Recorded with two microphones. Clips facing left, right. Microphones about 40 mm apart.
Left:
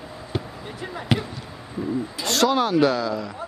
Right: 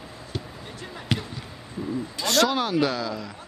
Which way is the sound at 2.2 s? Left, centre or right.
Centre.